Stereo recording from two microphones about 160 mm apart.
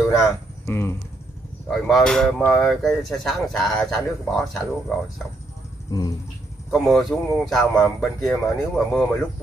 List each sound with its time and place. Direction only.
0.7 s speech: 15° left (ahead or behind)
1.7 s speech: centre (ahead or behind)
5.9 s a sound: 25° left (ahead or behind)
6.7 s speech: centre (ahead or behind)